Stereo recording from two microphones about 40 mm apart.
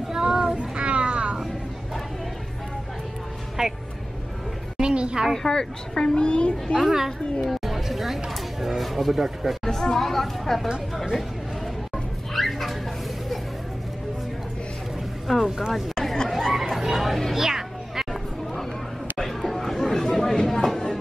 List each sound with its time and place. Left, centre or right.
0.2 s child singing: centre
0.6 s a sound: right
3.6 s speech: centre
4.7 s music: right
5.3 s a child's voice: centre
7.4 s speech: centre
9.7 s speech: centre
11.1 s a sound: centre
15.2 s speech: centre
15.9 s chatter: centre
17.3 s music: centre
19.1 s chatter: centre